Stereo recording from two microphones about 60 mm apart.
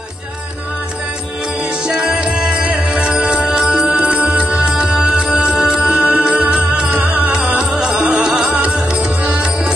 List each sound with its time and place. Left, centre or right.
1.6 s music: centre